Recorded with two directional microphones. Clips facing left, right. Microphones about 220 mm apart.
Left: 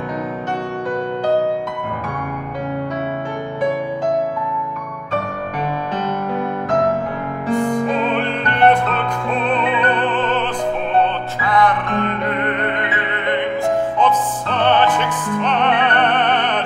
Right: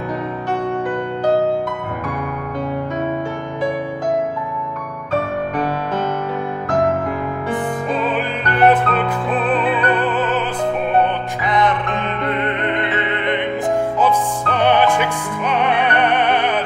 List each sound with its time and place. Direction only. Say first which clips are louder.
8.1 s music: left 1 dB; 5° right (ahead or behind)
11.0 s music: even; 20° right (ahead or behind)
13.9 s music: even; 10° right (ahead or behind)